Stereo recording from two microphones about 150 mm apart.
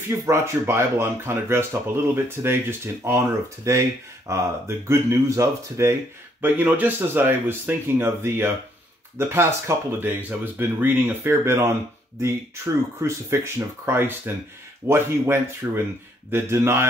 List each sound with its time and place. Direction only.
0.2 s speech: 20° right (ahead or behind)